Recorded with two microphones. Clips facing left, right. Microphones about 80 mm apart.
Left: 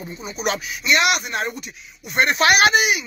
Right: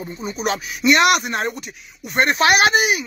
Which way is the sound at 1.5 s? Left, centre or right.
Right.